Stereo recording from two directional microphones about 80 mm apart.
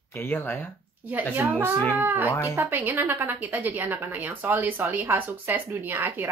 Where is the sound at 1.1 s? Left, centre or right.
Right.